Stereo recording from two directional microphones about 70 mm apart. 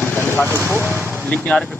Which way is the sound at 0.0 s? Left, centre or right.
Left.